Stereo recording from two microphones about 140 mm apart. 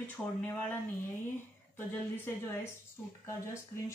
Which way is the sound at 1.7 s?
15° left (ahead or behind).